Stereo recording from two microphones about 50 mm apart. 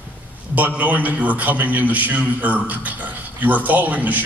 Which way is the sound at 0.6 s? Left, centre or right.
Right.